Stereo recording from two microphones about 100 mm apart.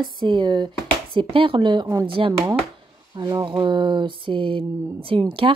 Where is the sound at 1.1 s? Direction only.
60° right (ahead or behind).